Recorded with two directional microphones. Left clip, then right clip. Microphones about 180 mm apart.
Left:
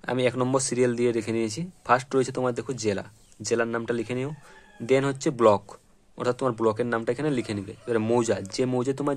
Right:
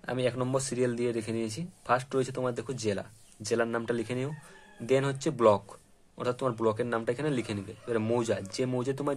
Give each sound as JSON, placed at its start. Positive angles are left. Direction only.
{"t": 0.0, "sound": "speech", "side_deg": 35}